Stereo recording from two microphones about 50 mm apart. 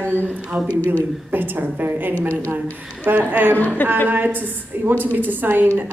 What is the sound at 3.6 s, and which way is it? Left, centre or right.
Speech, left.